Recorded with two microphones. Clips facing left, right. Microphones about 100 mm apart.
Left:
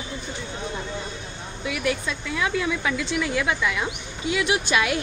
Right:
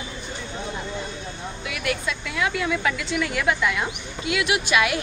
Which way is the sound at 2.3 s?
25° left (ahead or behind).